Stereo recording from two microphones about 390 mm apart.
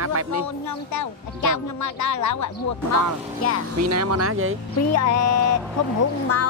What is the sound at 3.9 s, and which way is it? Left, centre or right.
Speech, right.